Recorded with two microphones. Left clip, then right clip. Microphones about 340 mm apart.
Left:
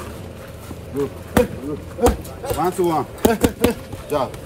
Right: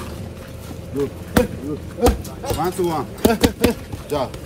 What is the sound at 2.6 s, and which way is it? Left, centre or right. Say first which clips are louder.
Speech: left 3 dB; left.